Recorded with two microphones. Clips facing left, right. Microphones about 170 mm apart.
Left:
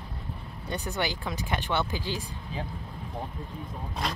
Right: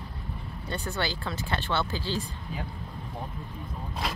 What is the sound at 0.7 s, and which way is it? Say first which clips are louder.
Speech: left 1 dB; 15° left (ahead or behind).